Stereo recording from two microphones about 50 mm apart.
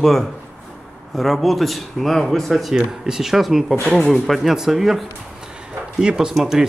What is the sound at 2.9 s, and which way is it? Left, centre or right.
Speech, centre.